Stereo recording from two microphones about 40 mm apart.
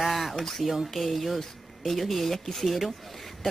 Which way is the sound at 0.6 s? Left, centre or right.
Centre.